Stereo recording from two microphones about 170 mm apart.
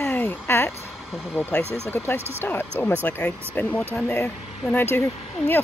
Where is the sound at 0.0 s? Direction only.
10° left (ahead or behind).